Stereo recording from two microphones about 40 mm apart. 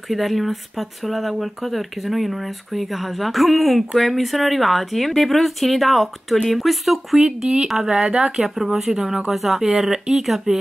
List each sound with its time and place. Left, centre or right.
0.1 s speech: centre
7.2 s speech: centre
8.4 s speech: centre
9.3 s speech: centre